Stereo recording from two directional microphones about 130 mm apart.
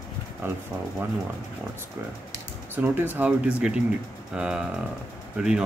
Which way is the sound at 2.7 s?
15° right (ahead or behind).